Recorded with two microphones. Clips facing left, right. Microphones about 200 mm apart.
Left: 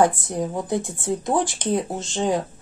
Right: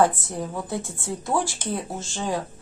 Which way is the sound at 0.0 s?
15° left (ahead or behind).